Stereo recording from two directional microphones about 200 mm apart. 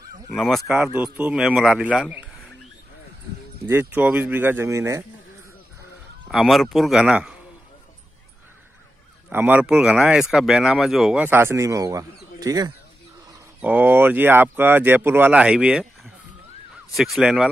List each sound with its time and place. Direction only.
0.3 s a man's voice: centre (ahead or behind)
3.6 s speech: 10° right (ahead or behind)
6.2 s a man's voice: centre (ahead or behind)
9.3 s speech: 10° right (ahead or behind)
13.6 s a man's voice: 10° right (ahead or behind)